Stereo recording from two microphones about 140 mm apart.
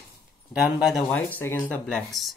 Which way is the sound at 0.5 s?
5° right (ahead or behind).